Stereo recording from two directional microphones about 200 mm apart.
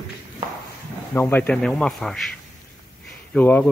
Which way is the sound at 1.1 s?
10° left (ahead or behind).